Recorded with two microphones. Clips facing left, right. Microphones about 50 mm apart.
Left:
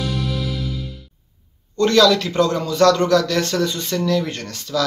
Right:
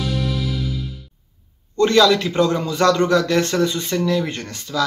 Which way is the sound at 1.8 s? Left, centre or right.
Centre.